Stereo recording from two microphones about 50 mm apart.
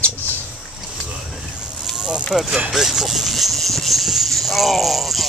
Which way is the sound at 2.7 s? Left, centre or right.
Centre.